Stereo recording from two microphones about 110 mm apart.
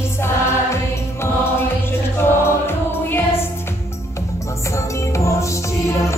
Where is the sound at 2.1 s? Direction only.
20° left (ahead or behind).